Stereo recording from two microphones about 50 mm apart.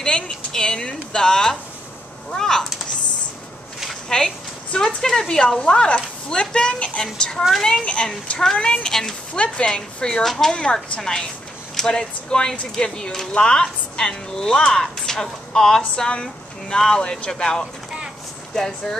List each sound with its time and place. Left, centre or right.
0.0 s speech: centre
4.1 s speech: centre
5.6 s speech: left
7.8 s a child's voice: left
8.8 s speech: centre
9.3 s a child's voice: left
10.2 s speech: centre
10.5 s speech: centre